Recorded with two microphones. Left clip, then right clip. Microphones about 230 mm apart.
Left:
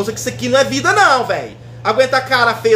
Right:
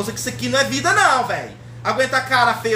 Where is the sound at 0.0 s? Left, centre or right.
Right.